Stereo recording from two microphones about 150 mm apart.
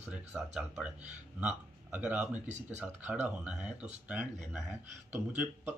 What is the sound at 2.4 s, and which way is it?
Speech, 50° right (ahead or behind).